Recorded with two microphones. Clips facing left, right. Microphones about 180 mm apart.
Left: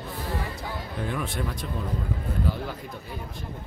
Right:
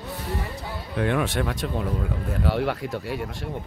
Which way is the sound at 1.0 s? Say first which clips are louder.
Right 8 dB; 80° right.